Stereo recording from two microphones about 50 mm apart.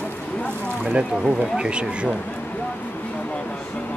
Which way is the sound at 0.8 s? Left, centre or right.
Centre.